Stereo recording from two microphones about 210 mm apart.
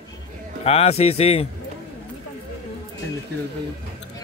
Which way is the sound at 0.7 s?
30° left (ahead or behind).